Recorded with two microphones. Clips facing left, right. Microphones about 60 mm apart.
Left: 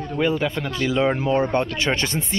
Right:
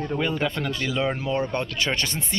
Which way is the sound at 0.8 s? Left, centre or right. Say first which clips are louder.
Left 7 dB; left.